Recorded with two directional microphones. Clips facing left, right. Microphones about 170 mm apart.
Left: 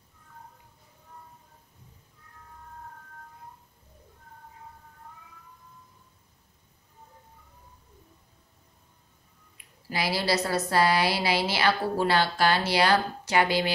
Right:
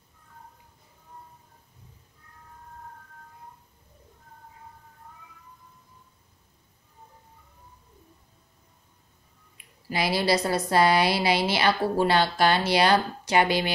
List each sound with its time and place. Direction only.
9.8 s a woman's voice: 20° right (ahead or behind)